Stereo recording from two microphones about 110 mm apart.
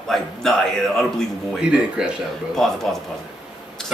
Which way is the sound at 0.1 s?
5° left (ahead or behind).